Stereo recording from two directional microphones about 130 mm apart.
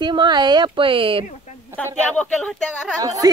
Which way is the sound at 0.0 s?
35° right (ahead or behind).